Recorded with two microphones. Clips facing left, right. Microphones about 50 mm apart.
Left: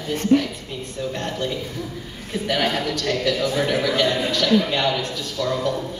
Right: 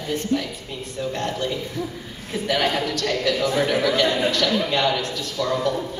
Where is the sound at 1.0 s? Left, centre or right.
Centre.